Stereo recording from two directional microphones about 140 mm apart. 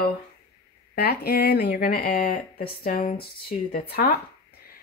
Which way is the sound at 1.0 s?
90° left.